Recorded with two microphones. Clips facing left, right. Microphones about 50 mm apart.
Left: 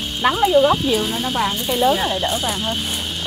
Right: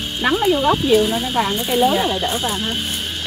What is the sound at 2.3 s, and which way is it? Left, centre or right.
Speech, right.